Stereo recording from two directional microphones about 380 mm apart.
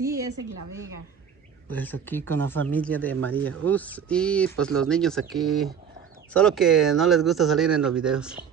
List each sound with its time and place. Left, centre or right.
0.4 s a woman's voice: right
1.7 s speech: centre